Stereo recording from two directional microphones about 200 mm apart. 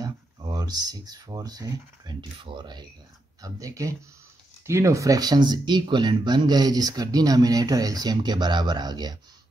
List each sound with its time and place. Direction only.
0.0 s speech: 20° right (ahead or behind)